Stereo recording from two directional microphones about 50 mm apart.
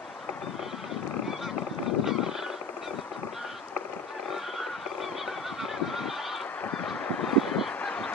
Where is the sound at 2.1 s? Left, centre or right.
Centre.